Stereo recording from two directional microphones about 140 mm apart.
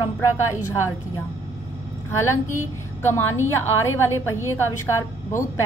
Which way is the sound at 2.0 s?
20° left (ahead or behind).